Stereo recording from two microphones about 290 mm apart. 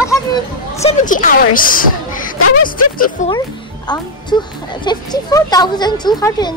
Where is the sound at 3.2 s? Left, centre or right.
Left.